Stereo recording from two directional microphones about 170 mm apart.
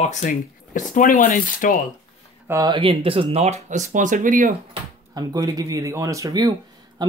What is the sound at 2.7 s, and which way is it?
Speech, 35° right (ahead or behind).